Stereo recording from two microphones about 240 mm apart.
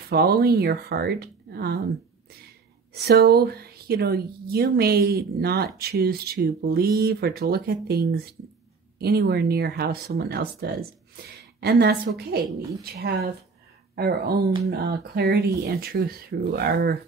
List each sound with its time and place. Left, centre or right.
0.1 s a woman's voice: right
2.9 s a woman's voice: right